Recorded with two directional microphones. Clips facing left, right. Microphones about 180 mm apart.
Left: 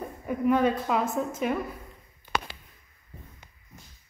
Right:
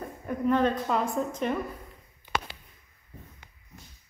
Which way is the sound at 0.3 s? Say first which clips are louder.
Left 1 dB; 10° left (ahead or behind).